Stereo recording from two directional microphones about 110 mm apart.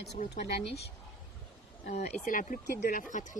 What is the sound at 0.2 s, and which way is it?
Speech, 90° left.